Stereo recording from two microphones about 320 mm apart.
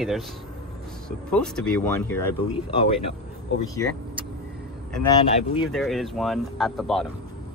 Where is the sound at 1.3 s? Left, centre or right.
Centre.